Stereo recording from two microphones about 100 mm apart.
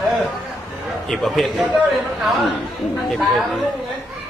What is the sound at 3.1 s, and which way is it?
Speech, centre (ahead or behind).